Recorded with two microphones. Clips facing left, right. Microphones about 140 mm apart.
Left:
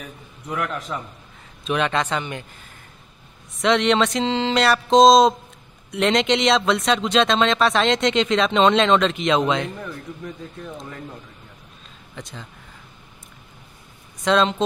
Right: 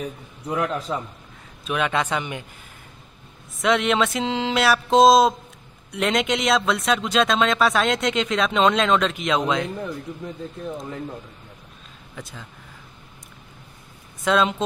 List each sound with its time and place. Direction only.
0.5 s a man's voice: 30° right (ahead or behind)
1.7 s speech: 10° right (ahead or behind)
3.5 s speech: 5° right (ahead or behind)
12.2 s speech: 5° right (ahead or behind)
14.2 s speech: 5° right (ahead or behind)